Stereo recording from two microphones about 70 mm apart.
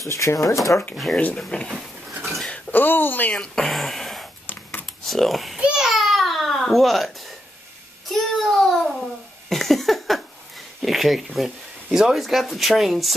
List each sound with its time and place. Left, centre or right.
0.0 s speech: left
0.9 s speech: centre
2.5 s a woman's voice: left
3.3 s speech: centre
4.5 s a sound: left
4.8 s computer keyboard: centre
5.6 s babbling: centre
8.1 s child singing: centre
9.5 s a sound: centre
10.8 s speech: centre